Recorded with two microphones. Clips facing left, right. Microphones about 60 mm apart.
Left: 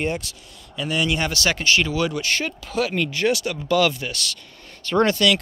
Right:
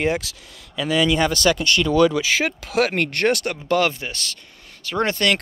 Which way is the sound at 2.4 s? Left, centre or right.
Right.